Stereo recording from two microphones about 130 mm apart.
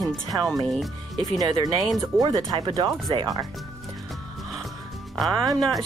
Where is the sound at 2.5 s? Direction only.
30° right (ahead or behind).